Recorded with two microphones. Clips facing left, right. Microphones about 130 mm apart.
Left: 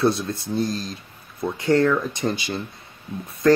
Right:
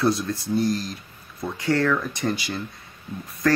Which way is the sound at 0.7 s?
25° left (ahead or behind).